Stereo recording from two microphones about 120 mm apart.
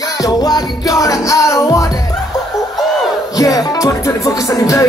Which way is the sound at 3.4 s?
30° left (ahead or behind).